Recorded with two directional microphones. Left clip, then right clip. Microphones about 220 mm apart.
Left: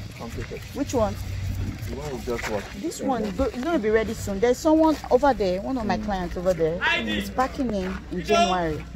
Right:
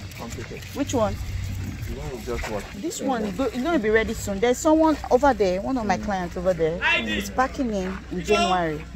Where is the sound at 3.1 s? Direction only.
25° right (ahead or behind).